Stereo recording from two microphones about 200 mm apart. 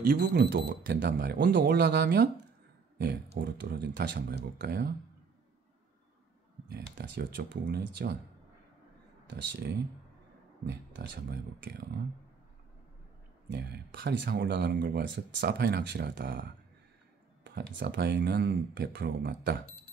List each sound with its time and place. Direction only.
0.2 s speech: 55° right (ahead or behind)
6.7 s speech: 55° right (ahead or behind)
9.3 s speech: 60° right (ahead or behind)
13.5 s speech: 55° right (ahead or behind)
15.0 s speech: 60° right (ahead or behind)